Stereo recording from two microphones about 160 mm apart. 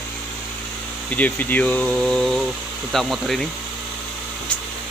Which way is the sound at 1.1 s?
10° left (ahead or behind).